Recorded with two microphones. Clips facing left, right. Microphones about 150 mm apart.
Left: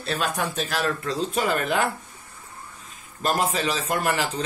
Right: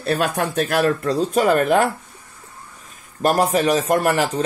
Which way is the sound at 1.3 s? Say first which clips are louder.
Right 8 dB; 45° right (ahead or behind).